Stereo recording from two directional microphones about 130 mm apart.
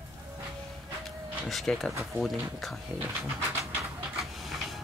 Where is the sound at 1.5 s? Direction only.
Centre (ahead or behind).